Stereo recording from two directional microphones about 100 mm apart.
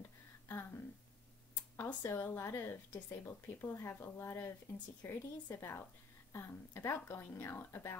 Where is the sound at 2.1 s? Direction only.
25° left (ahead or behind).